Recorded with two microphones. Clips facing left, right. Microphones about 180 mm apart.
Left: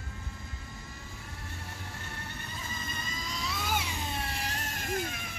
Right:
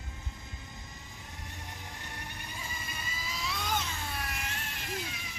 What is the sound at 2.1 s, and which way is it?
Cat, 15° right (ahead or behind).